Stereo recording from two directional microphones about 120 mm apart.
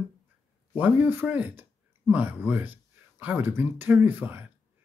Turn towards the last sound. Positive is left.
turn(degrees=-15)  # may be behind; listen again after turning